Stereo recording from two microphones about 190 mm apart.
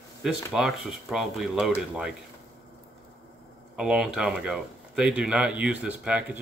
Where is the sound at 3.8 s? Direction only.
5° right (ahead or behind).